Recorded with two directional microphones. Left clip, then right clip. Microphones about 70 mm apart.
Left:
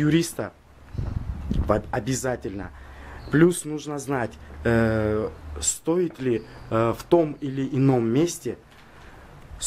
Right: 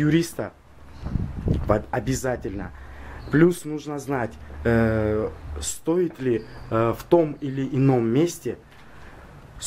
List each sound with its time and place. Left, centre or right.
0.0 s a man's voice: left